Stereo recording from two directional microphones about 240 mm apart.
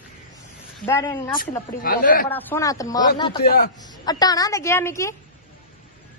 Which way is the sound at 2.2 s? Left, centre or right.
Centre.